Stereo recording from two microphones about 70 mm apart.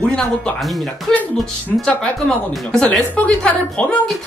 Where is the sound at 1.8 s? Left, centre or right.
Centre.